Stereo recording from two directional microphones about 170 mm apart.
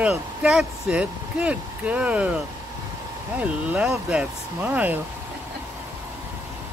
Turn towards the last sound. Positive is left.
turn(degrees=-10)  # may be behind; listen again after turning